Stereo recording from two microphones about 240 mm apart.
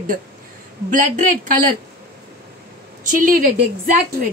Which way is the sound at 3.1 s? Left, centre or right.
Right.